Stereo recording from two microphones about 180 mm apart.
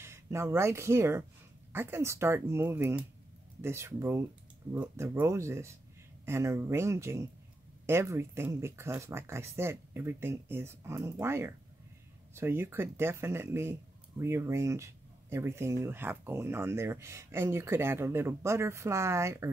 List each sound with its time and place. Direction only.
0.0 s speech: 15° right (ahead or behind)